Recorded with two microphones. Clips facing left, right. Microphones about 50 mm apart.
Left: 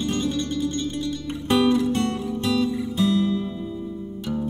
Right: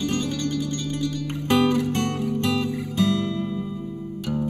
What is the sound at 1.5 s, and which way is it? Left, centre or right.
Music, right.